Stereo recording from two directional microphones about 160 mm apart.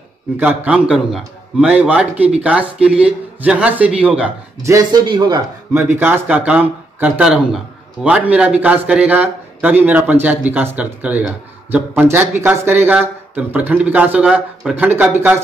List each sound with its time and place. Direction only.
0.4 s speech: 10° right (ahead or behind)
4.6 s speech: 25° right (ahead or behind)
5.7 s speech: 15° right (ahead or behind)